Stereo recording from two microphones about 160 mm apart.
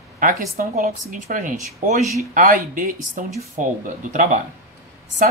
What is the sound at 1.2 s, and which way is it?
Speech, 55° right (ahead or behind).